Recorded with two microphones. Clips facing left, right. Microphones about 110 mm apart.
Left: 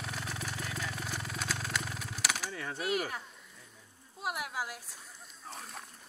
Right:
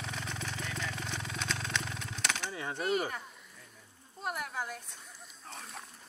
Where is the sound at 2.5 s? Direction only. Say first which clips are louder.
Right 1 dB; 20° right (ahead or behind).